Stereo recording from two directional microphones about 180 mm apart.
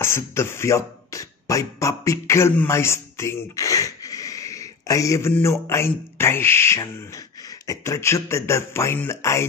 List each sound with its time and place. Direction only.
0.0 s speech: 15° left (ahead or behind)